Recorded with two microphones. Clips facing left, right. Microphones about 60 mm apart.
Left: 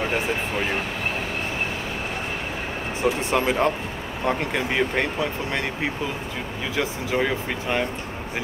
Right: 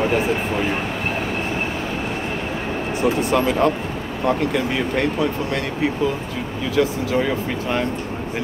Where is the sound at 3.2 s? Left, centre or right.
Left.